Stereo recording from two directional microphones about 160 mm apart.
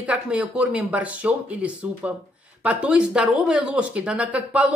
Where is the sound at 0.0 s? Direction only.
5° right (ahead or behind).